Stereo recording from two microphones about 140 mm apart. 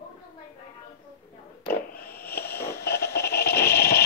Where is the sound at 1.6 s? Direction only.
90° left.